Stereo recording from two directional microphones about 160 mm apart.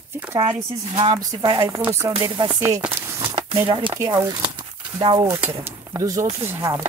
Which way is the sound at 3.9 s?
20° right (ahead or behind).